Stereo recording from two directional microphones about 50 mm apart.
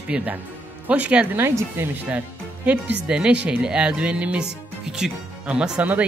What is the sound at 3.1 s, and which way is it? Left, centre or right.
Speech, centre.